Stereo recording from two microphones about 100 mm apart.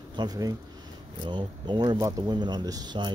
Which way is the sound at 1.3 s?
50° right (ahead or behind).